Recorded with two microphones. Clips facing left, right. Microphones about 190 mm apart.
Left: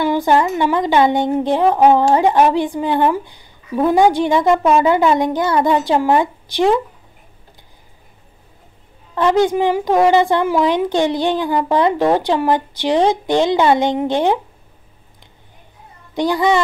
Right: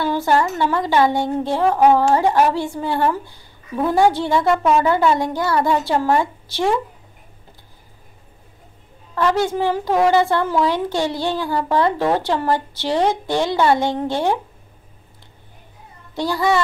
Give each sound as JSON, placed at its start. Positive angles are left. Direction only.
{"t": 0.0, "sound": "a woman's voice", "side_deg": 15}
{"t": 9.1, "sound": "a woman's voice", "side_deg": 20}
{"t": 16.2, "sound": "a woman's voice", "side_deg": 15}